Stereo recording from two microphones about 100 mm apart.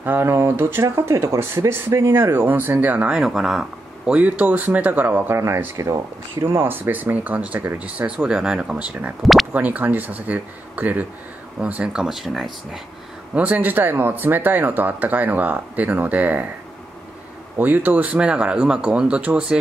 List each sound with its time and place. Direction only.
0.0 s speech: 25° right (ahead or behind)
5.4 s speech: 30° right (ahead or behind); by 9.1 s 10° right (ahead or behind)
9.2 s speech: centre (ahead or behind)
9.5 s speech: 15° right (ahead or behind)
13.3 s speech: 15° right (ahead or behind)
17.6 s speech: 15° right (ahead or behind)